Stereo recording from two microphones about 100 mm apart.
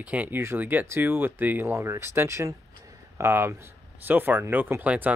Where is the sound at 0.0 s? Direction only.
15° right (ahead or behind).